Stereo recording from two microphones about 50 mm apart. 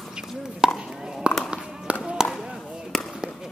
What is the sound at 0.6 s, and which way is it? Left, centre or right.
Chopping, centre.